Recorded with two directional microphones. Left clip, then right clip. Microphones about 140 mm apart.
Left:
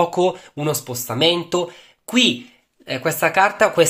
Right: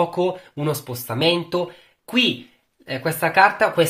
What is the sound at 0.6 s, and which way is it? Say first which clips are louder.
Speech: left 2 dB; 25° left (ahead or behind).